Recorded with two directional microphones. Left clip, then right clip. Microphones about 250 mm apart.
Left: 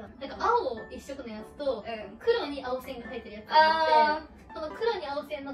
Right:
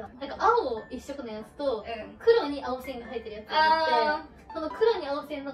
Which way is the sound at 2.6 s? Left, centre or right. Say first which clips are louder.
Right 1 dB; centre.